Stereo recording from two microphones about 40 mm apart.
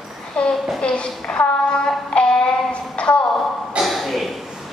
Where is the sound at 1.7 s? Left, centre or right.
Left.